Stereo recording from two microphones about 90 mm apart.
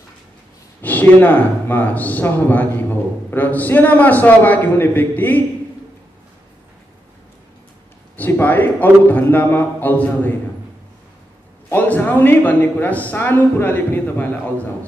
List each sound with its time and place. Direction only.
0.8 s speech: 20° left (ahead or behind)
8.2 s speech: 20° left (ahead or behind)
11.7 s speech: 20° left (ahead or behind)